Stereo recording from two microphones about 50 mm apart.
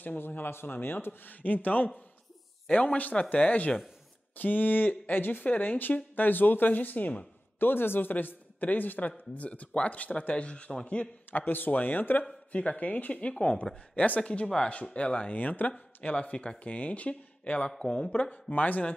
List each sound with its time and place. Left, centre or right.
0.0 s a man's voice: left
2.6 s a man's voice: left
7.5 s a man's voice: left
11.2 s a man's voice: left
12.5 s speech: left
18.1 s speech: left